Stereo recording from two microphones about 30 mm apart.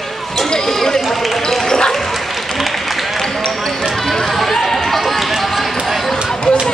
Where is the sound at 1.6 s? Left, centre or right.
Centre.